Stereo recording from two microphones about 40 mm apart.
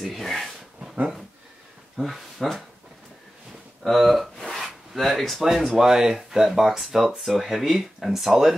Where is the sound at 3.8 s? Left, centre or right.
Centre.